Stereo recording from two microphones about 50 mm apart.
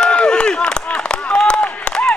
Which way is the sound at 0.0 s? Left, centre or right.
Centre.